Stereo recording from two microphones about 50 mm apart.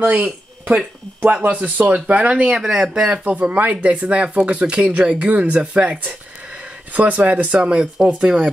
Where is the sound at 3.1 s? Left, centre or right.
Right.